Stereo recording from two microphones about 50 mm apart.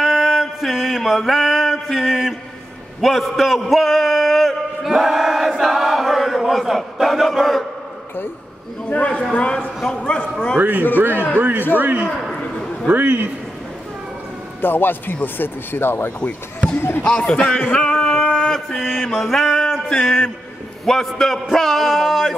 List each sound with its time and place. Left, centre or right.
0.0 s mantra: centre
3.0 s a man's voice: centre
4.8 s chant: centre
8.8 s speech: left
10.6 s a man's voice: right
14.6 s speech: left
17.0 s a man's voice: left
21.5 s a sound: centre